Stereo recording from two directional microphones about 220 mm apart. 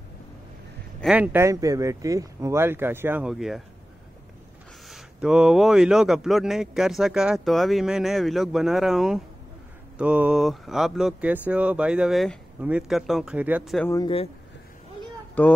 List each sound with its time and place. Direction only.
1.0 s speech: 5° right (ahead or behind)
4.8 s speech: centre (ahead or behind)
13.8 s speech: 20° left (ahead or behind)
15.4 s speech: 5° left (ahead or behind)